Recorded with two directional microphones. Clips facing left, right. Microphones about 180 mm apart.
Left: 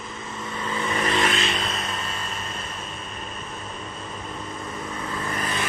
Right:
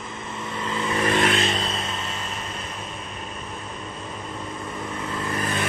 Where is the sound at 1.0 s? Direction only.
55° right (ahead or behind).